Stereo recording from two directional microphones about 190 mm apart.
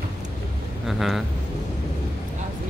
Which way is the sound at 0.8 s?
Centre (ahead or behind).